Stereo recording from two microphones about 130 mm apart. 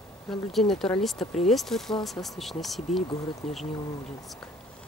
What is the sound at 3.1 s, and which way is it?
Speech, 25° left (ahead or behind).